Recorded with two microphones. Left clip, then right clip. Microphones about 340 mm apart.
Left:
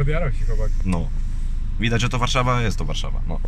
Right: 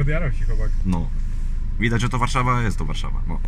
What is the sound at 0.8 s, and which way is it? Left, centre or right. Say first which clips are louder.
Speech: right 2 dB; centre.